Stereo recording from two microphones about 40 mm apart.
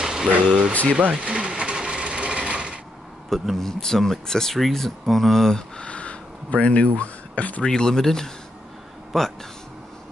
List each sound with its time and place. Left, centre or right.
0.0 s speech: centre
1.1 s sewing machine: right
3.3 s speech: centre
5.8 s a sound: left
7.0 s speech: left
7.6 s speech: centre